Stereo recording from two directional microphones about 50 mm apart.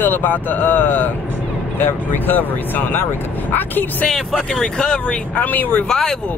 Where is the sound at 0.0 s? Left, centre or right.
Left.